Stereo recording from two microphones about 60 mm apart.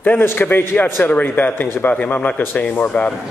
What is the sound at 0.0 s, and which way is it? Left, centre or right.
A man's voice, left.